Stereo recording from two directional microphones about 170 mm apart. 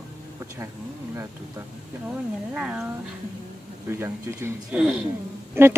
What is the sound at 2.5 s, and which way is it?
Speech, 5° right (ahead or behind).